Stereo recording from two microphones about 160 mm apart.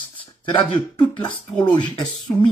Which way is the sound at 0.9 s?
30° left (ahead or behind).